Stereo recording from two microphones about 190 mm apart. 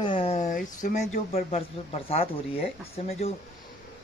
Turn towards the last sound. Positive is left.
turn(degrees=35)  # may be behind; listen again after turning